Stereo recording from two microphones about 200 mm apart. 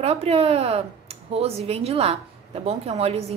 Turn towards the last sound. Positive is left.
turn(degrees=-30)  # may be behind; listen again after turning